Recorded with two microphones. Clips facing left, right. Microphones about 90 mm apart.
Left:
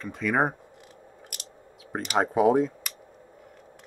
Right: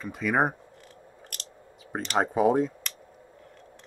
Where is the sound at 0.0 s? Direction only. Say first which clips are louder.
Even; 5° right (ahead or behind).